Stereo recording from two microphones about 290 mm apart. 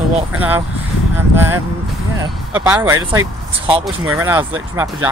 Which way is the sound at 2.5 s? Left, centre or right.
Centre.